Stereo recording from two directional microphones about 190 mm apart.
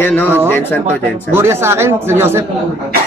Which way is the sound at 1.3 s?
15° right (ahead or behind).